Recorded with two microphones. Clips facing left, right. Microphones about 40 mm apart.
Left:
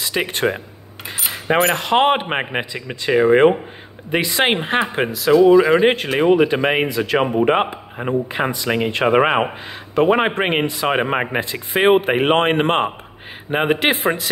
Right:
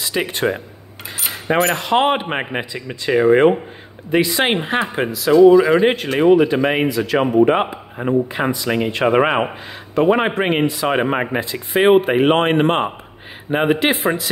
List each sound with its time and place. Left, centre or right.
0.1 s speech: left
1.5 s coin: left
1.8 s a man's voice: left
4.1 s a man's voice: left
5.3 s speech: centre
5.8 s a man's voice: left
8.6 s a man's voice: left